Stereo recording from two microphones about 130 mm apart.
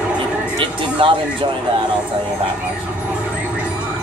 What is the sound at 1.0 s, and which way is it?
Speech, 45° right (ahead or behind).